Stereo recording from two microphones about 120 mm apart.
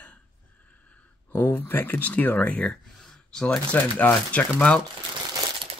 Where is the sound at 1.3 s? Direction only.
15° left (ahead or behind).